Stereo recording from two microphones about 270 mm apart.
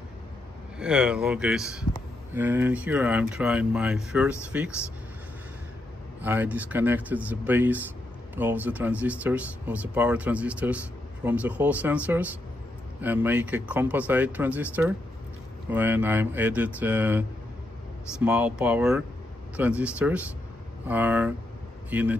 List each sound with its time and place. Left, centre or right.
0.7 s speech: centre
6.2 s speech: centre
18.2 s speech: centre